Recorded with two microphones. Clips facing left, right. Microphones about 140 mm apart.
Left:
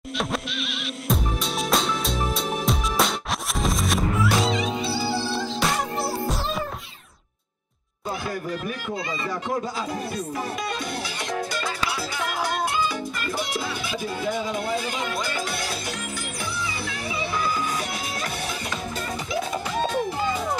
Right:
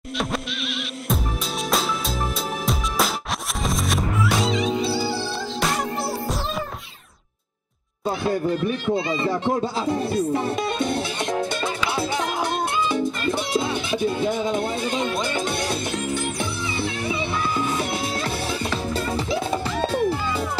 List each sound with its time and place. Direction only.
1.7 s music: centre (ahead or behind)
8.2 s speech: 25° right (ahead or behind)
12.8 s music: 25° right (ahead or behind)
16.8 s music: 25° right (ahead or behind)